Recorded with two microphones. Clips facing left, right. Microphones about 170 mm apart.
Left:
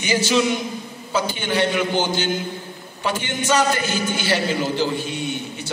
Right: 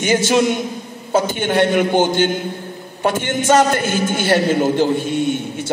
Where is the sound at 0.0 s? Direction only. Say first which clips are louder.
Right 4 dB; 50° right (ahead or behind).